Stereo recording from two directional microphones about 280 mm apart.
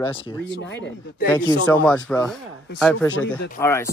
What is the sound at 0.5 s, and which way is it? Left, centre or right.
Speech, left.